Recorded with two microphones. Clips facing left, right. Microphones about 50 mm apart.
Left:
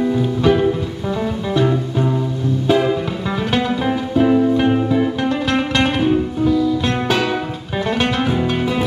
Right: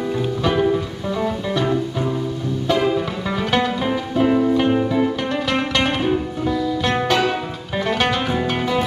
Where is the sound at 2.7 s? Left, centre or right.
Centre.